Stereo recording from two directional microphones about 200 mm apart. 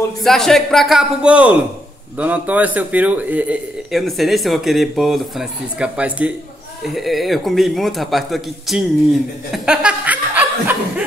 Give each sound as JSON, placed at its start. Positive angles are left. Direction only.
{"t": 0.2, "sound": "a man's voice", "side_deg": 0}